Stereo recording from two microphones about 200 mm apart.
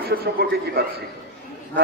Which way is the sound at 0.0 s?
50° right (ahead or behind).